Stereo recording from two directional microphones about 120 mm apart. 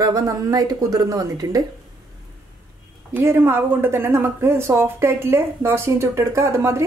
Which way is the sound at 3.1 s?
20° right (ahead or behind).